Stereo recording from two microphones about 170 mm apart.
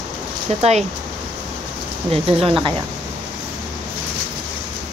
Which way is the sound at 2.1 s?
35° right (ahead or behind).